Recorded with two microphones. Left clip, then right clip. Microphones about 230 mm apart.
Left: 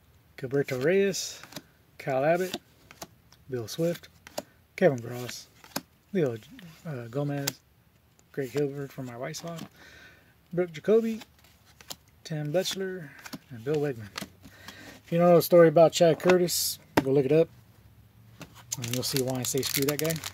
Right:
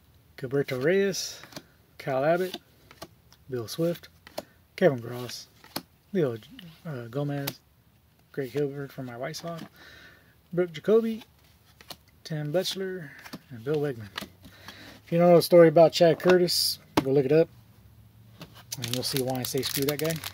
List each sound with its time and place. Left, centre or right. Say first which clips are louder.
0.4 s speech: even; centre
2.5 s a sound: left 2 dB; left
3.4 s speech: right 1 dB; centre
5.6 s a sound: left 1 dB; left
6.1 s speech: right 1 dB; centre
9.8 s bleat: right 1 dB; centre
11.8 s a sound: left 1 dB; left
12.2 s speech: even; centre
14.1 s power windows: right 1 dB; left
14.8 s speech: right 1 dB; centre
18.4 s keys jangling: even; centre
18.7 s speech: right 1 dB; centre